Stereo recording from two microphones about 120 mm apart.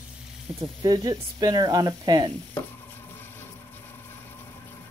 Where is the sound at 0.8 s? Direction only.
30° right (ahead or behind).